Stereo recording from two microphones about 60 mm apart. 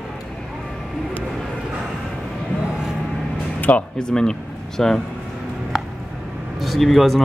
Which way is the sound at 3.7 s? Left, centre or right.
Left.